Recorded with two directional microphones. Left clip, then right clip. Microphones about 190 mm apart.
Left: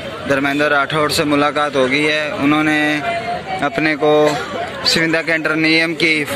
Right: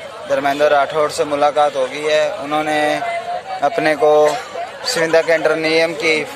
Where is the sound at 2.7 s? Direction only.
15° right (ahead or behind).